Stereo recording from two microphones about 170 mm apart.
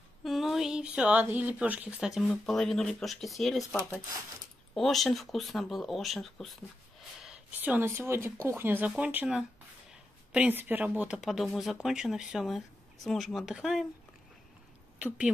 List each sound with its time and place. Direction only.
0.2 s speech: centre (ahead or behind)
4.7 s speech: centre (ahead or behind)